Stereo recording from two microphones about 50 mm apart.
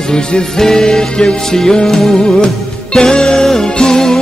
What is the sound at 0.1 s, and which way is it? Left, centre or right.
Music, centre.